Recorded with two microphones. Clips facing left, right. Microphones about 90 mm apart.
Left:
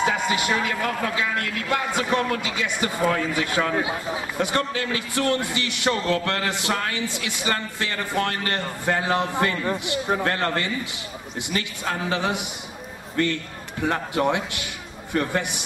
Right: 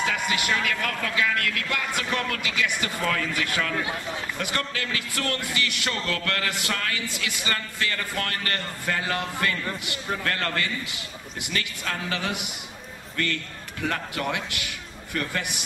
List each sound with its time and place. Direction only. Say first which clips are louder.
0.0 s a man's voice: left 4 dB; 25° left (ahead or behind)
3.8 s a man's voice: left 3 dB; 15° left (ahead or behind)